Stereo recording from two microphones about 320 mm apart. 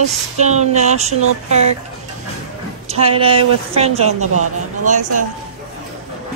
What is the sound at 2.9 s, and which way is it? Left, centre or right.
A woman's voice, centre.